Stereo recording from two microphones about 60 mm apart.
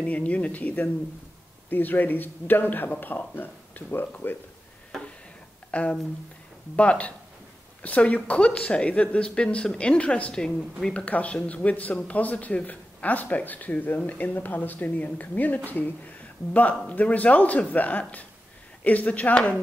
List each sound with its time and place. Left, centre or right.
0.0 s speech: left
5.7 s speech: left